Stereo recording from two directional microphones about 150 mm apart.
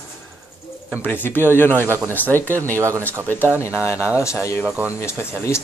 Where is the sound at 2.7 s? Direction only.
20° right (ahead or behind).